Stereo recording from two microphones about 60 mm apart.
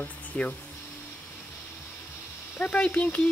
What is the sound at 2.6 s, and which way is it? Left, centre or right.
Speech, left.